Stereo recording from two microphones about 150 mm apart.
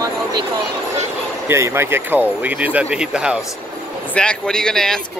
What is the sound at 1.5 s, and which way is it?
Speech, 15° right (ahead or behind).